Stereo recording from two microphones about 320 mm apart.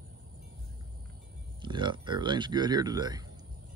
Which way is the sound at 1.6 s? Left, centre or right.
Centre.